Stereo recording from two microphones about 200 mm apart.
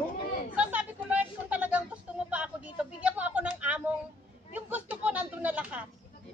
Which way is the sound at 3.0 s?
5° right (ahead or behind).